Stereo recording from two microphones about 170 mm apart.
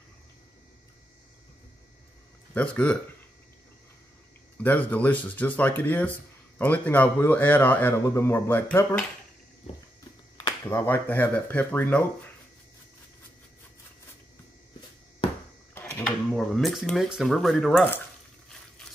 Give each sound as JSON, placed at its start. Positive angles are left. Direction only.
{"t": 2.5, "sound": "a man's voice", "side_deg": 10}
{"t": 4.6, "sound": "a man's voice", "side_deg": 10}
{"t": 9.7, "sound": "walk", "side_deg": 35}
{"t": 10.3, "sound": "speech", "side_deg": 15}
{"t": 15.7, "sound": "a sound", "side_deg": 15}
{"t": 16.0, "sound": "speech", "side_deg": 0}